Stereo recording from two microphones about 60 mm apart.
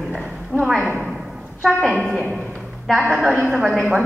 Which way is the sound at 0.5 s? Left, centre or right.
Left.